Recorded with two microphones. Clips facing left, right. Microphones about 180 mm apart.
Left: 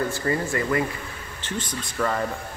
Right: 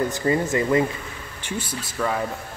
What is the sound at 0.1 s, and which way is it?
Speech, 20° right (ahead or behind).